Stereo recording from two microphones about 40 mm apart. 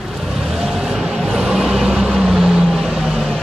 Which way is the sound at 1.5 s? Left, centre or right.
Centre.